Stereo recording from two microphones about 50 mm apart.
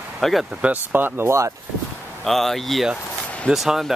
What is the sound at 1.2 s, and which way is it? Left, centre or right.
Speech, right.